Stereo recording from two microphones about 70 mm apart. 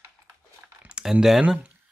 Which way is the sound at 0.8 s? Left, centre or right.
Centre.